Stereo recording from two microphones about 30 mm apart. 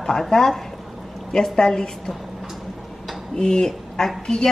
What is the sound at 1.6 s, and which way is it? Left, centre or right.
Speech, left.